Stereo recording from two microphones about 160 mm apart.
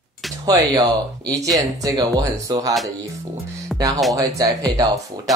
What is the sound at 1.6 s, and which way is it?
Speech, 25° right (ahead or behind).